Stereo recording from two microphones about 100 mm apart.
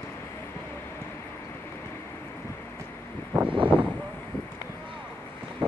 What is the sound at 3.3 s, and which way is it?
Vehicle, 15° right (ahead or behind).